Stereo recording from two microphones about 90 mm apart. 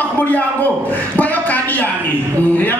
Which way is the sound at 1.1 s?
20° left (ahead or behind).